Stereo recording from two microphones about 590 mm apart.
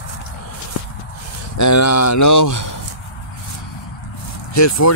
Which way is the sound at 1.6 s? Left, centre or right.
Left.